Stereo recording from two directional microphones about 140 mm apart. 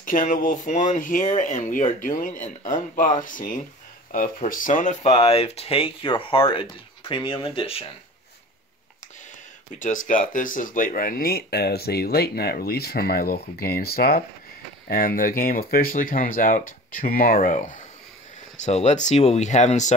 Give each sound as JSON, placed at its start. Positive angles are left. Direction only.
{"t": 0.0, "sound": "speech", "side_deg": 75}
{"t": 5.2, "sound": "speech", "side_deg": 45}
{"t": 9.8, "sound": "speech", "side_deg": 65}
{"t": 18.6, "sound": "speech", "side_deg": 50}